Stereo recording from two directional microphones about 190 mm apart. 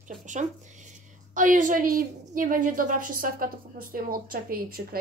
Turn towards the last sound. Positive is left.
turn(degrees=-50)  # may be behind; listen again after turning